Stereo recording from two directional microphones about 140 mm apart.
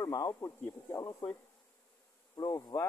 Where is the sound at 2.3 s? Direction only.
30° left (ahead or behind).